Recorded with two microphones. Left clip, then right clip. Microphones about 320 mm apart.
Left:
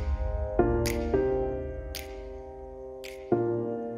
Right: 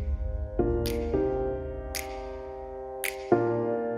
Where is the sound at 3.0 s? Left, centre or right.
Right.